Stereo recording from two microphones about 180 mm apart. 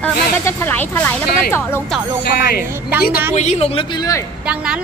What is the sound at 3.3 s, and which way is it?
Speech, 35° left (ahead or behind).